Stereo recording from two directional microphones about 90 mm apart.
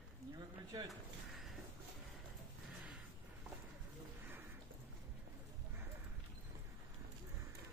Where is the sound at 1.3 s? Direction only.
Centre (ahead or behind).